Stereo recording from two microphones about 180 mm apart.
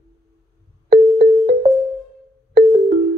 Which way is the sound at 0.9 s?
70° right (ahead or behind).